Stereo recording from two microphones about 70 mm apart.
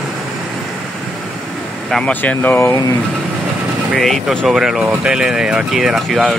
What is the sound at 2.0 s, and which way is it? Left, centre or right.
Speech, left.